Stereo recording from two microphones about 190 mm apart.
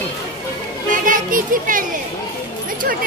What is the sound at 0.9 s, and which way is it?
A child's voice, 45° right (ahead or behind).